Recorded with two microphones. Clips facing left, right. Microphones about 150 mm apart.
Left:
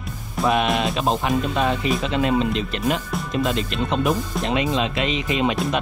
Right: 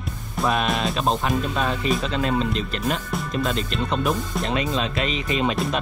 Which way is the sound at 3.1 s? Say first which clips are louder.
Left 1 dB; centre (ahead or behind).